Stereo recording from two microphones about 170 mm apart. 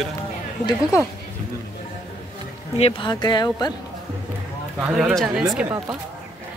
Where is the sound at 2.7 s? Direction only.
35° left (ahead or behind).